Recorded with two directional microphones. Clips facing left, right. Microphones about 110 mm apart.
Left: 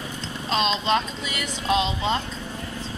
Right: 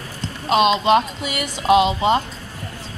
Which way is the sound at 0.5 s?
10° right (ahead or behind).